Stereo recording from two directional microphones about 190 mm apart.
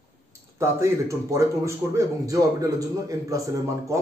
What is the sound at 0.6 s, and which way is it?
A man's voice, 15° right (ahead or behind).